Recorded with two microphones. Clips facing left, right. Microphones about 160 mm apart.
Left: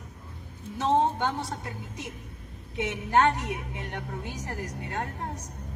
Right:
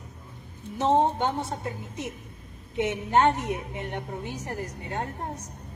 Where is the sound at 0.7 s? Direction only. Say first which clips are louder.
Right 2 dB; 20° right (ahead or behind).